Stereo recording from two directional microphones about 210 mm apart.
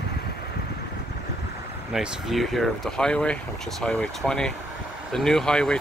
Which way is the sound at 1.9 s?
Centre (ahead or behind).